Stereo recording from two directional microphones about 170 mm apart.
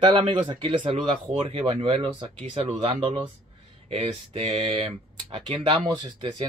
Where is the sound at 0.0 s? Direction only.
30° right (ahead or behind).